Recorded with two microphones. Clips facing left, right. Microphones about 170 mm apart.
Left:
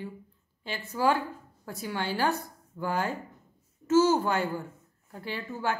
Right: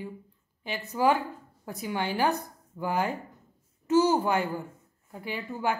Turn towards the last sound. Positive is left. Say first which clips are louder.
# right 1 dB
turn(degrees=-15)  # may be behind; listen again after turning